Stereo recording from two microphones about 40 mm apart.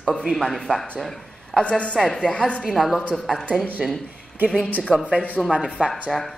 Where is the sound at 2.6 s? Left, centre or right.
Centre.